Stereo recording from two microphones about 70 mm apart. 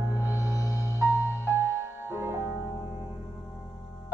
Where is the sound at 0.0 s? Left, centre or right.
Right.